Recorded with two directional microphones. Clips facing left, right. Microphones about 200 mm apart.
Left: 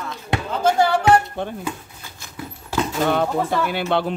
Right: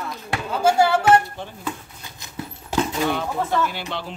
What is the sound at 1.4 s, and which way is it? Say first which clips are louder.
Speech: left 8 dB; 55° left (ahead or behind).